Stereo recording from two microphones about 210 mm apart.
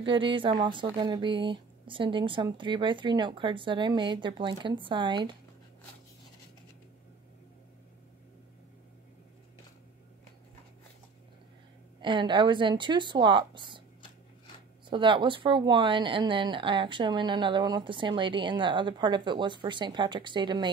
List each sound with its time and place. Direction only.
0.0 s speech: 25° right (ahead or behind)
12.0 s speech: 20° right (ahead or behind)
14.9 s speech: 25° right (ahead or behind)